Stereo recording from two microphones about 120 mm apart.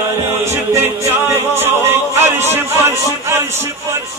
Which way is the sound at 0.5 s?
25° right (ahead or behind).